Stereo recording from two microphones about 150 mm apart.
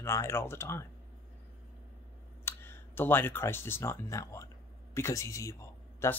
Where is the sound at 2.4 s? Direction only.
15° left (ahead or behind).